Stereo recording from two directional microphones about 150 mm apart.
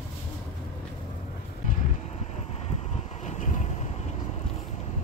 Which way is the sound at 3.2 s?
55° left (ahead or behind).